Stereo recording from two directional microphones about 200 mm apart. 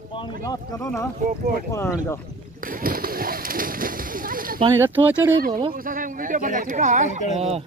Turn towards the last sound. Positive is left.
turn(degrees=-30)  # may be behind; listen again after turning